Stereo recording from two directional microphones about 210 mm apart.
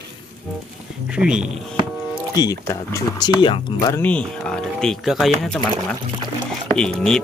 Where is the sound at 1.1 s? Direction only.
5° right (ahead or behind).